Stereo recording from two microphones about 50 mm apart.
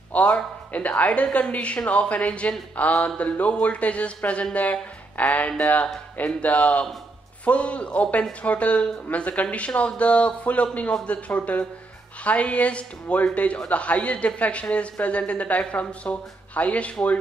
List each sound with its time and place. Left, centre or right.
0.1 s speech: left